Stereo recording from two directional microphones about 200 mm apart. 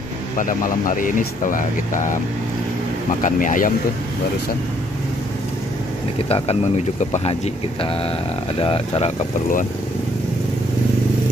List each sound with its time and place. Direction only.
0.4 s speech: 40° left (ahead or behind)
6.2 s speech: 30° left (ahead or behind)
8.5 s speech: 25° left (ahead or behind)